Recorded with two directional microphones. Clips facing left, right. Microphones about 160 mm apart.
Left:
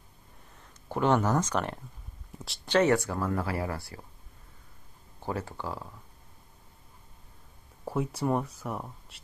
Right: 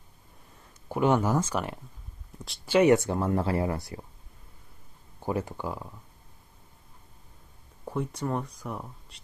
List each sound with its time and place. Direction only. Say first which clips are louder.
0.8 s speech: right 1 dB; 10° right (ahead or behind)
5.2 s speech: right 4 dB; 15° right (ahead or behind)
7.8 s speech: left 2 dB; 5° left (ahead or behind)